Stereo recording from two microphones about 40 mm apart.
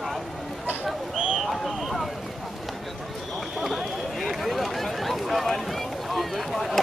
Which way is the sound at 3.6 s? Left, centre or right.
Centre.